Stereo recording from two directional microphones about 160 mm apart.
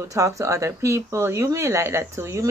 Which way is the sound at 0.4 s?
20° right (ahead or behind).